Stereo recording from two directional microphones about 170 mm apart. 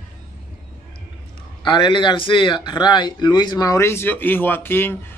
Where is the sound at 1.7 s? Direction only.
25° left (ahead or behind); by 4.9 s 10° left (ahead or behind).